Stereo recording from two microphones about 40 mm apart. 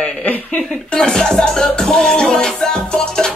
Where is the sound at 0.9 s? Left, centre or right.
Centre.